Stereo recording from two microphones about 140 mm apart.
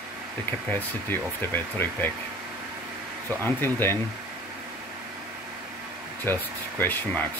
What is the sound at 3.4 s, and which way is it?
Speech, 15° left (ahead or behind).